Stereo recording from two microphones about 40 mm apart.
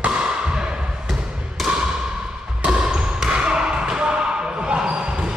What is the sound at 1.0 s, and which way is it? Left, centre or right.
Thump, centre.